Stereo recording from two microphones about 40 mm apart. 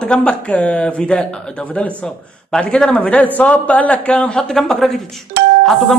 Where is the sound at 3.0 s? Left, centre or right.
Left.